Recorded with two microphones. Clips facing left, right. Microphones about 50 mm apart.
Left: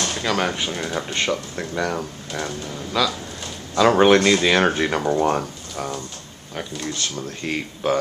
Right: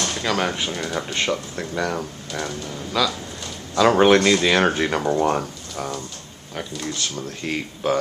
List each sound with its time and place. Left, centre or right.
0.2 s speech: centre
7.2 s speech: centre